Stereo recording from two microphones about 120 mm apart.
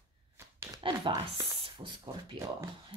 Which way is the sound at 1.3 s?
50° right (ahead or behind).